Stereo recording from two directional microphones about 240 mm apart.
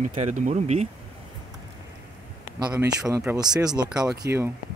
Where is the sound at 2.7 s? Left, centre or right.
Centre.